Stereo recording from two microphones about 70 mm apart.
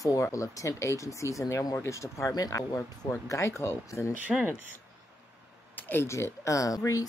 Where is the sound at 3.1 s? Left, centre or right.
Left.